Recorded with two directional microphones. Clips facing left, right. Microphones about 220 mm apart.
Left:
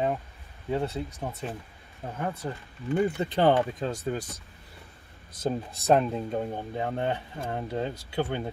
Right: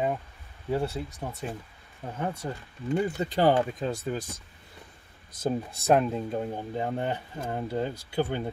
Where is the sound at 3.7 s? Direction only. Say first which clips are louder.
Even; centre (ahead or behind).